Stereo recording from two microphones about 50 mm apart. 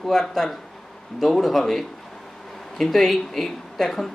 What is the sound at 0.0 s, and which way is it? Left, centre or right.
Speech, centre.